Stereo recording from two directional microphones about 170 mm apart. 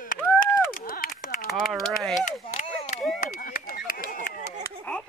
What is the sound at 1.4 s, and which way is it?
Typing, centre (ahead or behind).